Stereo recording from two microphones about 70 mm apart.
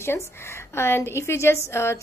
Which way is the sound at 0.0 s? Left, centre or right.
Left.